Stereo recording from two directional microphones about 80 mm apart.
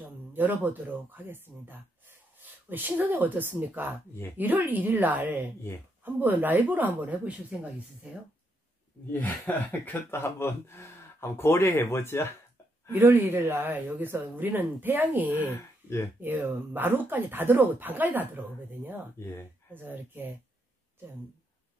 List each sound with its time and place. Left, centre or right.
0.0 s speech: right
9.5 s speech: left
10.1 s speech: left
12.9 s speech: right
15.4 s speech: left
16.2 s speech: right